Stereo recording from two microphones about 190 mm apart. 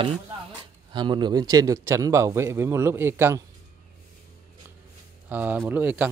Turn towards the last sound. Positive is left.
turn(degrees=-10)  # may be behind; listen again after turning